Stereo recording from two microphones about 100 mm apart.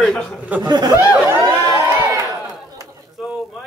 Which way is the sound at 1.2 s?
25° right (ahead or behind).